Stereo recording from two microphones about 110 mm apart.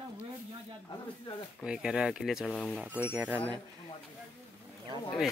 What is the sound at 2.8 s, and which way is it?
Speech, 15° right (ahead or behind).